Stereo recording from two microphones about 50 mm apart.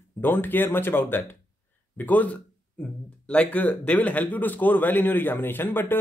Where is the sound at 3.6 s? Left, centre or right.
Left.